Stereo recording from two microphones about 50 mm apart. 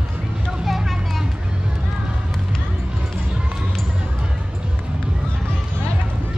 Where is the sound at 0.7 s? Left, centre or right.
Centre.